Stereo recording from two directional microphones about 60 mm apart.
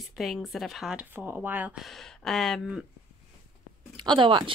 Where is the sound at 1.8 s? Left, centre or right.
Centre.